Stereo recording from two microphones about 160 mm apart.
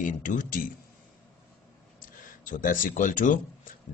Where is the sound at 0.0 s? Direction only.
55° left (ahead or behind).